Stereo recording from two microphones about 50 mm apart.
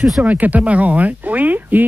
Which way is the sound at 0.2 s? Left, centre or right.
Right.